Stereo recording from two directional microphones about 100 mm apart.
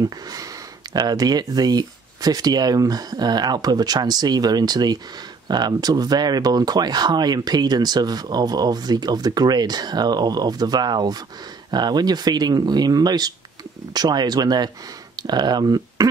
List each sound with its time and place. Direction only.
0.0 s speech: 35° right (ahead or behind)